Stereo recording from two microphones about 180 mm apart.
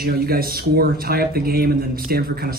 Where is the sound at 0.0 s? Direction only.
55° right (ahead or behind).